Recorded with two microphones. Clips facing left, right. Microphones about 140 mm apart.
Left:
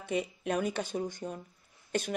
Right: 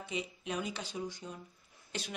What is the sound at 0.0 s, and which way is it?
Speech, 55° left (ahead or behind).